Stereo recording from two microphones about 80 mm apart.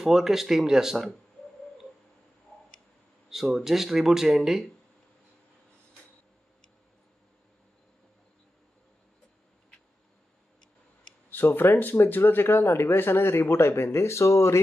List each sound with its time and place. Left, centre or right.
0.0 s speech: centre
3.3 s speech: centre
11.2 s speech: left